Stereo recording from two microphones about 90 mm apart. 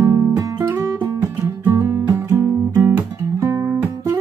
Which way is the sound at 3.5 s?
35° right (ahead or behind).